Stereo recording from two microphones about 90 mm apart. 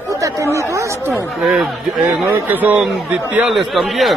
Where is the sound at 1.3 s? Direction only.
Centre (ahead or behind).